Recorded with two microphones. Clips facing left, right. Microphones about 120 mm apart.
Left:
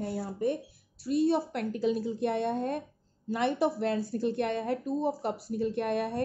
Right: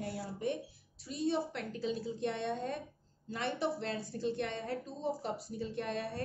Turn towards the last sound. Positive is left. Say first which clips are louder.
# left 8 dB
turn(degrees=55)  # may be behind; listen again after turning